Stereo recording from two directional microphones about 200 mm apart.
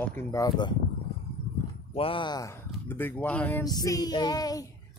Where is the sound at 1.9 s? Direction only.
25° left (ahead or behind).